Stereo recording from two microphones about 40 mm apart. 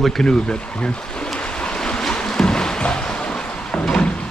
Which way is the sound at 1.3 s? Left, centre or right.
Left.